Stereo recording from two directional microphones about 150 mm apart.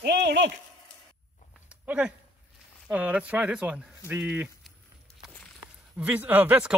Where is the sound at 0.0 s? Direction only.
90° right.